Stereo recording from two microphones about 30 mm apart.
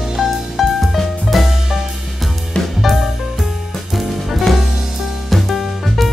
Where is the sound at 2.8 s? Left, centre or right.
Centre.